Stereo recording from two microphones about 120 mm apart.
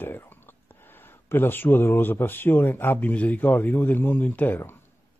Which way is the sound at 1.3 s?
20° left (ahead or behind).